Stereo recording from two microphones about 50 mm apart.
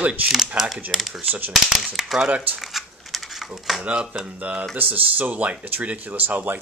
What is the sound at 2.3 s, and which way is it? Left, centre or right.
Speech, right.